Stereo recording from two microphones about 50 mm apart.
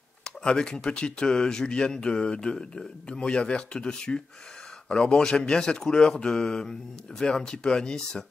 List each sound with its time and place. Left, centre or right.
0.2 s speech: centre